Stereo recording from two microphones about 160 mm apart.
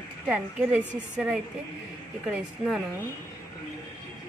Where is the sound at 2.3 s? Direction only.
5° right (ahead or behind).